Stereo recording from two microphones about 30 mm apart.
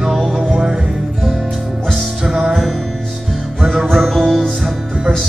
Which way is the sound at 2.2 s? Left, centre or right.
Centre.